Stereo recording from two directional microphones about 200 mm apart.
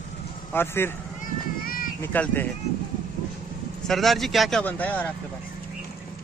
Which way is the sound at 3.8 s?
Centre (ahead or behind).